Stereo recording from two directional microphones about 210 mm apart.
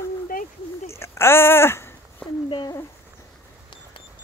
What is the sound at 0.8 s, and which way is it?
Speech, 15° left (ahead or behind).